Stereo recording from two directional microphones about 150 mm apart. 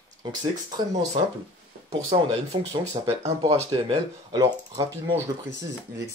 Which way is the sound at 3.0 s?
40° right (ahead or behind).